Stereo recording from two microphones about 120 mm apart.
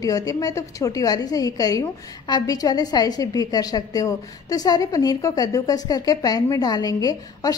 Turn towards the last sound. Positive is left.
turn(degrees=30)  # may be behind; listen again after turning